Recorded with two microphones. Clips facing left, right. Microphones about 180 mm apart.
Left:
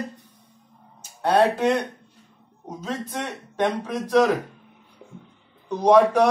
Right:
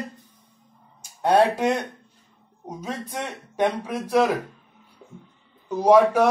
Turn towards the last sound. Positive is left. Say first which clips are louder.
# even
turn(degrees=-5)  # may be behind; listen again after turning